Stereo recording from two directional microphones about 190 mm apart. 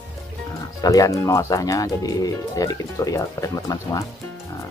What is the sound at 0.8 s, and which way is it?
Speech, 20° left (ahead or behind).